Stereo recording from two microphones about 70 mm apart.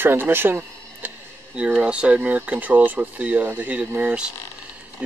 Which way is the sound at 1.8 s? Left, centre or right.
Centre.